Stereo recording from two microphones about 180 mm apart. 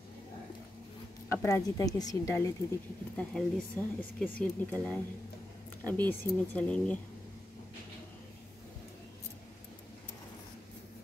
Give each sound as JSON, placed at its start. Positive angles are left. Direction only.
{"t": 1.3, "sound": "a woman's voice", "side_deg": 15}
{"t": 3.2, "sound": "a woman's voice", "side_deg": 5}